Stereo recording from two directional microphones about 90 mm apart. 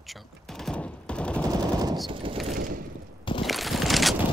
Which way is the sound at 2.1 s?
80° right.